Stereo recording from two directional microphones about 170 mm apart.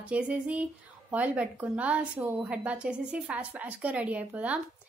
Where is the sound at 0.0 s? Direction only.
5° right (ahead or behind).